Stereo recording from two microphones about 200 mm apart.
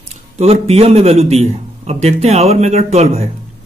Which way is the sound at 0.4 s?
30° right (ahead or behind).